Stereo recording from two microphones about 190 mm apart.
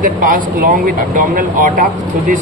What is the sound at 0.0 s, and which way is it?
Speech, 45° right (ahead or behind).